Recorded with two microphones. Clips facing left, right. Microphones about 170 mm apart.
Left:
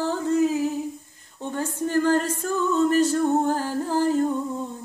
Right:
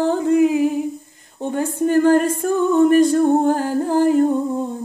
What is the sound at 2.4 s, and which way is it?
Humming, 55° right (ahead or behind).